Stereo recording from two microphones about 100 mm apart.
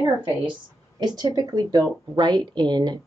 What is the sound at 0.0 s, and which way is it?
A woman's voice, 45° right (ahead or behind).